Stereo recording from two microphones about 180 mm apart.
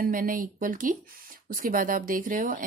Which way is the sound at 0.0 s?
50° right (ahead or behind).